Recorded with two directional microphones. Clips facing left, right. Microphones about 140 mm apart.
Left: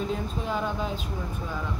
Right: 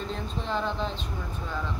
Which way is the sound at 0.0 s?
10° left (ahead or behind).